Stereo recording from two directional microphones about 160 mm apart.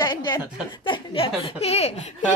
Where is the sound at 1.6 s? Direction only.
40° left (ahead or behind).